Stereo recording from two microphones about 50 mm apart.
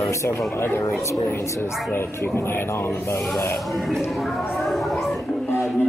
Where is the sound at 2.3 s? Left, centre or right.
Left.